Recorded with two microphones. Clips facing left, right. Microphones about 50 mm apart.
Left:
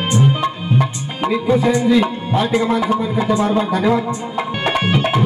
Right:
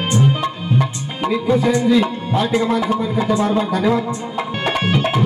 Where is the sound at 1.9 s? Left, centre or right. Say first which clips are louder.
Left 1 dB; centre.